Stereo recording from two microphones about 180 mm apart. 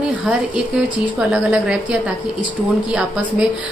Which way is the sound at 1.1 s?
5° right (ahead or behind).